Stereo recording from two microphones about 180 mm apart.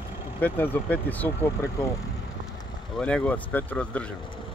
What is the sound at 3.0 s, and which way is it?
Speech, 5° left (ahead or behind).